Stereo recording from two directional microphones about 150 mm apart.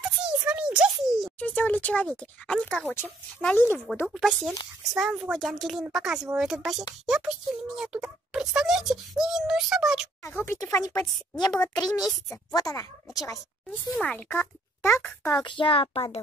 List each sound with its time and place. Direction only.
0.2 s a sound: 10° right (ahead or behind)
1.4 s speech: 10° left (ahead or behind)
4.1 s speech: centre (ahead or behind)
10.2 s a woman's voice: 15° left (ahead or behind)
12.5 s a woman's voice: 25° left (ahead or behind)
13.7 s speech: 10° left (ahead or behind)
15.3 s a child's voice: 30° left (ahead or behind)